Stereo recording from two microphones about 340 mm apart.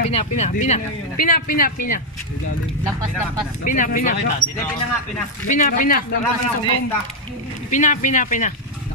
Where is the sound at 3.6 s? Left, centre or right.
Left.